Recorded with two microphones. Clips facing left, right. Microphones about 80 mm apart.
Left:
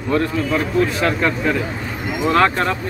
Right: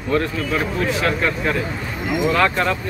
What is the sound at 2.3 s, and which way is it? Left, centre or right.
Speech, left.